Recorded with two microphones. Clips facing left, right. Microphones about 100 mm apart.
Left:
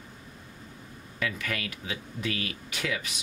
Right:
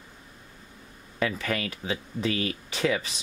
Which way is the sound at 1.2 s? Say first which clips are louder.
Right 5 dB; 30° right (ahead or behind).